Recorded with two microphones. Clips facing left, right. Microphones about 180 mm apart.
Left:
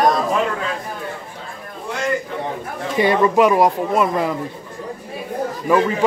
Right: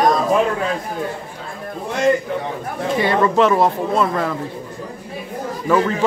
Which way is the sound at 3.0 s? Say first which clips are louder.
Left 2 dB; 15° left (ahead or behind).